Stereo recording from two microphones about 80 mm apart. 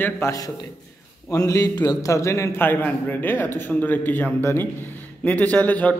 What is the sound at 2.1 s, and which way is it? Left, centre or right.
A man's voice, left.